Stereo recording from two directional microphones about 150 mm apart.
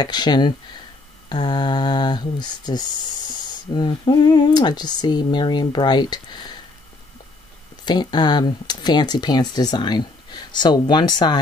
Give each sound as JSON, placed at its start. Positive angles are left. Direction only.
{"t": 0.0, "sound": "speech", "side_deg": 30}
{"t": 7.8, "sound": "speech", "side_deg": 30}